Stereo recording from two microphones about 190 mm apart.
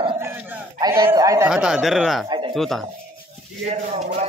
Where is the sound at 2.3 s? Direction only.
25° right (ahead or behind).